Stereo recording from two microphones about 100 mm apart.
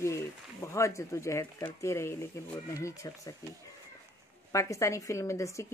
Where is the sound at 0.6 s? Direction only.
30° left (ahead or behind).